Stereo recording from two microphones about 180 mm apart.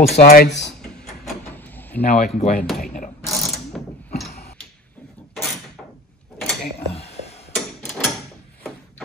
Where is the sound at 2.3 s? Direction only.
40° left (ahead or behind).